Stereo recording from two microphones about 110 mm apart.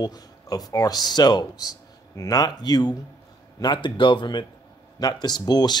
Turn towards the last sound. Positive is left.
turn(degrees=40)  # may be behind; listen again after turning